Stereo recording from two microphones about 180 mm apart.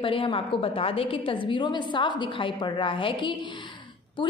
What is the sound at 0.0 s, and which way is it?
A woman's voice, 30° left (ahead or behind).